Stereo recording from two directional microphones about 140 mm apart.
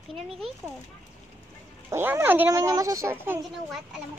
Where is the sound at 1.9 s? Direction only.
15° right (ahead or behind).